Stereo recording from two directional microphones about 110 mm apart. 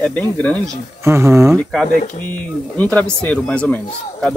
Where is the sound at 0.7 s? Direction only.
25° right (ahead or behind).